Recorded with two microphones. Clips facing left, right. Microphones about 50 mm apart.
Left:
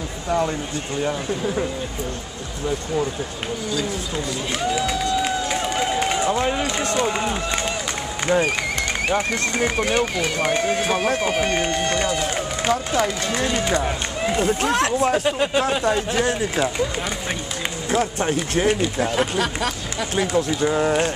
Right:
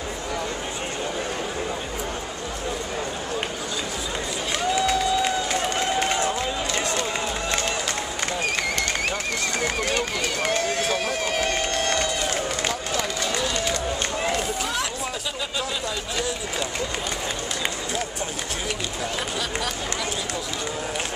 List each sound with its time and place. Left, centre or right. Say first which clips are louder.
4.7 s run: right 2 dB; centre
6.4 s speech: left 4 dB; left
7.0 s speech: left 5 dB; left
9.1 s speech: left 5 dB; centre
12.2 s run: left 2 dB; centre
14.6 s speech: left 8 dB; left
17.9 s speech: left 8 dB; left